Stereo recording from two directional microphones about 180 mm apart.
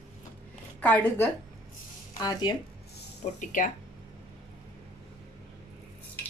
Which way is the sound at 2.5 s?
25° left (ahead or behind).